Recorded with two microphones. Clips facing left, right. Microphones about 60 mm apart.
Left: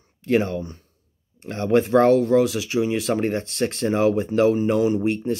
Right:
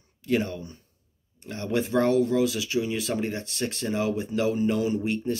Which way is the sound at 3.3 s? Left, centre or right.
Left.